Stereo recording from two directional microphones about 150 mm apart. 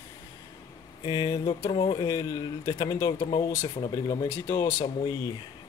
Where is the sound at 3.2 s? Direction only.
35° left (ahead or behind).